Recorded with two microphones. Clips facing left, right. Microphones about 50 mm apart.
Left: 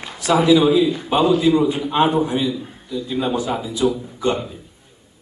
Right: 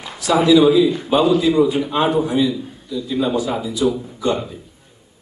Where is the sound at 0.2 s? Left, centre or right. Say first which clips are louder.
Even; left.